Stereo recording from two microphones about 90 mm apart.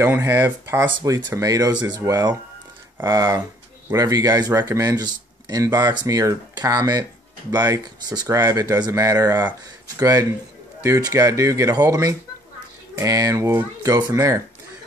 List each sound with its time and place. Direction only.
0.0 s speech: 25° right (ahead or behind)
3.9 s speech: 40° right (ahead or behind)
8.4 s speech: 35° right (ahead or behind)
14.1 s speech: 35° right (ahead or behind)